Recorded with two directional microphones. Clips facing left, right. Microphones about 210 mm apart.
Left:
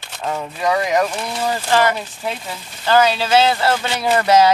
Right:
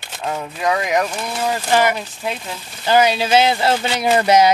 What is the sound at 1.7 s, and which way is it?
Speech, 15° right (ahead or behind).